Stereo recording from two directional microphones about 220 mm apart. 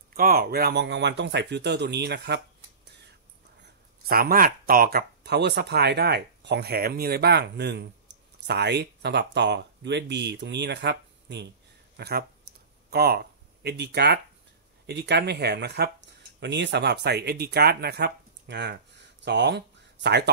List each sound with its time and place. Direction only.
0.1 s speech: 40° right (ahead or behind)
3.6 s speech: 45° right (ahead or behind)